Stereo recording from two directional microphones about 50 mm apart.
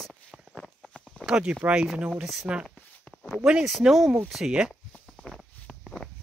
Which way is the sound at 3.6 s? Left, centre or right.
Centre.